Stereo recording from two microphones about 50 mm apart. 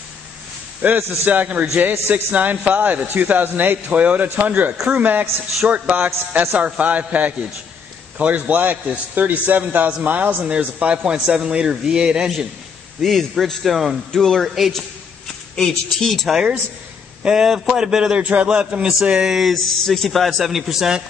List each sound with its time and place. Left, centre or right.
0.8 s a man's voice: right; by 12.3 s centre
13.0 s a man's voice: centre
14.7 s a sound: centre
15.5 s speech: centre
16.1 s a man's voice: centre
17.2 s a man's voice: centre
18.2 s a man's voice: right; by 19.5 s centre
19.5 s a man's voice: centre